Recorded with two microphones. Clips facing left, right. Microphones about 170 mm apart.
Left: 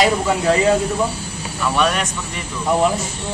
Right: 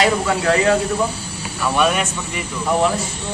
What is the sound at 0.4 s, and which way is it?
Speech, 15° left (ahead or behind).